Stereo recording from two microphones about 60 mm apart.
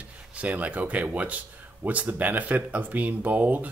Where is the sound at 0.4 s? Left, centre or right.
Right.